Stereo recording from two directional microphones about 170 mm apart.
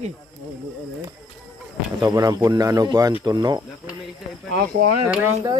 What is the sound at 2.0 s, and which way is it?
Speech, 25° right (ahead or behind).